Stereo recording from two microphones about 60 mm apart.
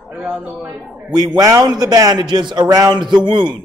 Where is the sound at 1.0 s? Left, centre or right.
Right.